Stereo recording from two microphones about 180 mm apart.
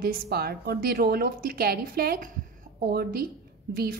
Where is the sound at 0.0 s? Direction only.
60° right (ahead or behind).